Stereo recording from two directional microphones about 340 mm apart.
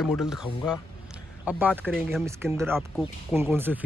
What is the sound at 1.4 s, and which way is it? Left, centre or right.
A man's voice, centre.